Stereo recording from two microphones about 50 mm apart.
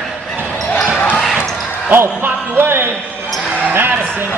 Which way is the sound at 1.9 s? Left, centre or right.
Right.